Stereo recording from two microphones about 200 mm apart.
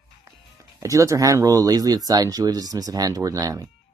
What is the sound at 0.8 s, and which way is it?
Speech, 15° right (ahead or behind).